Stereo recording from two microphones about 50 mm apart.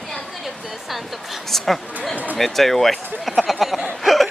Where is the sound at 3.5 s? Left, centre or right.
Centre.